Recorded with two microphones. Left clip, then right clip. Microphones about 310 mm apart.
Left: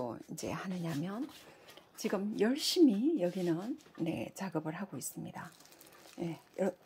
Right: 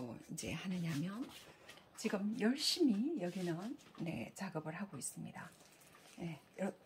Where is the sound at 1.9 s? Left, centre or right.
Left.